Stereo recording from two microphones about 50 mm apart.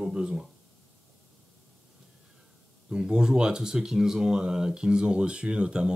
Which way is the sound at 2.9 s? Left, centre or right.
Centre.